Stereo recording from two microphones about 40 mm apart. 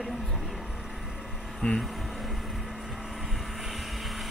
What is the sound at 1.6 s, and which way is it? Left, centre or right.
Speech, centre.